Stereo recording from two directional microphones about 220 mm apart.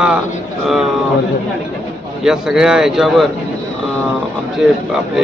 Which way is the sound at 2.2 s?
Centre (ahead or behind).